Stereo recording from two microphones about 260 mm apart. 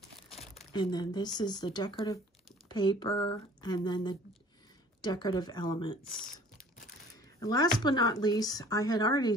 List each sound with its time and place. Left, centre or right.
0.4 s speech: left
7.3 s speech: centre